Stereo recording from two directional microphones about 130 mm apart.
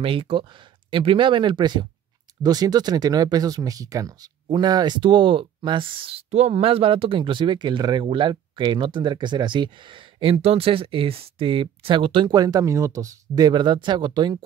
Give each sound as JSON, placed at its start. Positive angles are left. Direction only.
{"t": 0.0, "sound": "speech", "side_deg": -45}